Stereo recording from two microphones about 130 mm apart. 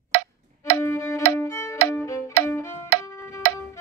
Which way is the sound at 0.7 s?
20° left (ahead or behind).